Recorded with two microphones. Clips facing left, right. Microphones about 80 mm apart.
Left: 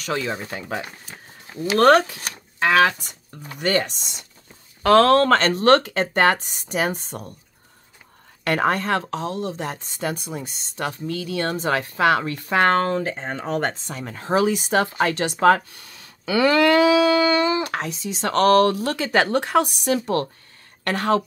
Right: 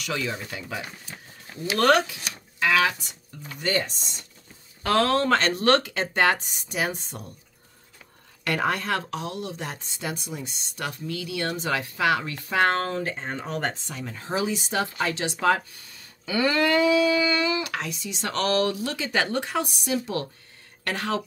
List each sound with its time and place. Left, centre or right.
0.0 s speech: left
3.5 s speech: left
8.5 s speech: left
16.3 s a sound: left
17.3 s speech: left